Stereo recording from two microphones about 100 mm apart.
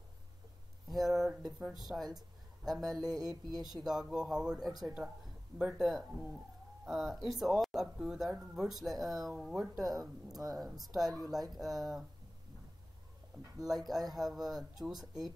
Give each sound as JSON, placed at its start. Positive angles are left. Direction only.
{"t": 0.8, "sound": "speech", "side_deg": 0}
{"t": 3.0, "sound": "a sound", "side_deg": -40}
{"t": 3.8, "sound": "speech", "side_deg": -5}
{"t": 13.6, "sound": "speech", "side_deg": 0}